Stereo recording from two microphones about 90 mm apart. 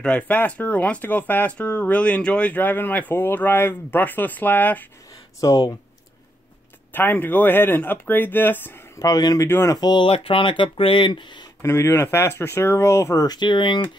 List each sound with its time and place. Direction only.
0.0 s speech: 15° left (ahead or behind)
5.4 s speech: 40° left (ahead or behind)
6.9 s speech: 20° left (ahead or behind)
9.0 s speech: 45° left (ahead or behind)
9.5 s speech: 30° left (ahead or behind)
9.8 s speech: 50° left (ahead or behind)
10.0 s speech: 90° left; by 11.4 s 60° left (ahead or behind)
11.6 s speech: 30° left (ahead or behind); by 13.8 s 65° left (ahead or behind)